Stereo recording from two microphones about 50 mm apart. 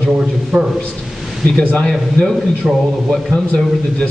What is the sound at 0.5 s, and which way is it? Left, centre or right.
Speech, right.